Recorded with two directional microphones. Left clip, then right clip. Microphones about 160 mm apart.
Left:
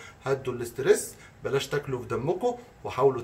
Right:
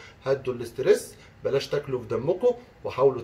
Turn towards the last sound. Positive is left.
turn(degrees=10)  # may be behind; listen again after turning